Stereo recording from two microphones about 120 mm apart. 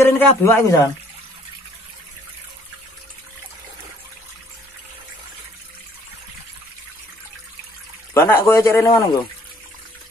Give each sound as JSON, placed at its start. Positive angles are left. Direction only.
{"t": 0.0, "sound": "a man's voice", "side_deg": 20}
{"t": 8.1, "sound": "speech", "side_deg": 20}